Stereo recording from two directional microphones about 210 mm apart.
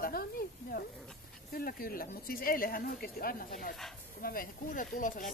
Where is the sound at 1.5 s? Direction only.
45° left (ahead or behind).